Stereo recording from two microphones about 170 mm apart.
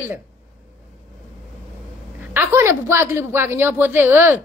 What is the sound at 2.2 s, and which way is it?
A woman's voice, 10° right (ahead or behind).